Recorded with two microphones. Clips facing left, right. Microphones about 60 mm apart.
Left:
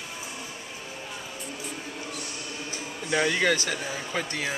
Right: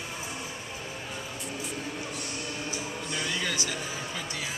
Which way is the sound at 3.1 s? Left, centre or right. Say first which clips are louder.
Left 10 dB; left.